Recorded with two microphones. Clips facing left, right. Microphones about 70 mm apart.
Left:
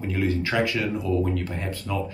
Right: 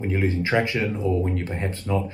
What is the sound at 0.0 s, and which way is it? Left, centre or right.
Speech, right.